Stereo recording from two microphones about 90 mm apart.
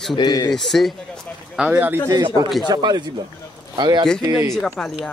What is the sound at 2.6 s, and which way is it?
A man's voice, 55° right (ahead or behind).